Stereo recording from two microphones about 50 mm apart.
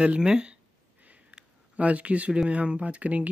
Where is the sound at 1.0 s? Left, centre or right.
Right.